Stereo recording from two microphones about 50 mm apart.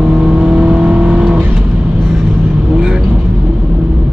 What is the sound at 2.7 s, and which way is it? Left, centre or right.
Vehicle, centre.